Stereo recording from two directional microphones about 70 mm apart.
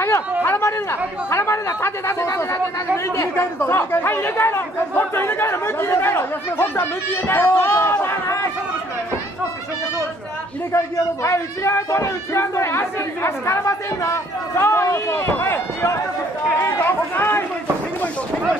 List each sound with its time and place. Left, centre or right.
0.4 s chatter: left
1.3 s a man's voice: left
11.2 s speech: left